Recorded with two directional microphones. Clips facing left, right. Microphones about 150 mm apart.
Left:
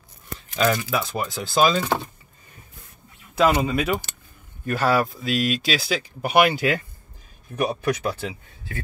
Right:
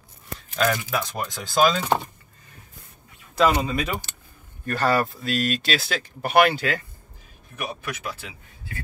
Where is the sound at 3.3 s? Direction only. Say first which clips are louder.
Left 1 dB; 5° left (ahead or behind).